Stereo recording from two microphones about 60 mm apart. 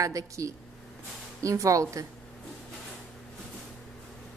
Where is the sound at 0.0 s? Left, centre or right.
Right.